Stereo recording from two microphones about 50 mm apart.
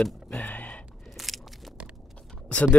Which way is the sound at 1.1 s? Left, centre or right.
Centre.